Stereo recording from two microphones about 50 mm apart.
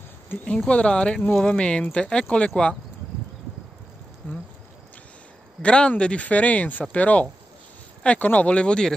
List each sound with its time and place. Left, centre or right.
0.3 s speech: left
0.7 s speech: left
5.6 s speech: left